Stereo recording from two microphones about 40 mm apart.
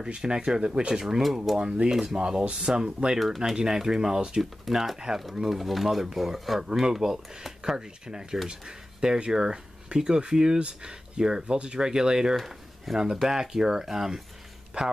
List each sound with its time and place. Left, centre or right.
0.1 s speech: right
1.3 s speech: centre
1.6 s speech: centre
4.4 s speech: centre
4.9 s speech: centre
12.4 s speech: centre
13.2 s speech: centre
14.8 s speech: right